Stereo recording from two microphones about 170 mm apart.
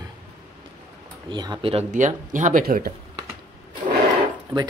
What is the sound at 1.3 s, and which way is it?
Speech, 25° right (ahead or behind).